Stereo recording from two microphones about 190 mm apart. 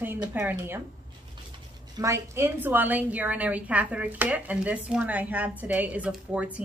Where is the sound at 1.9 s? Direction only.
15° right (ahead or behind).